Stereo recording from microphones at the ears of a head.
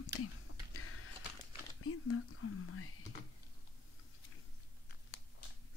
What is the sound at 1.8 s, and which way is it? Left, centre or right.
Speech, left.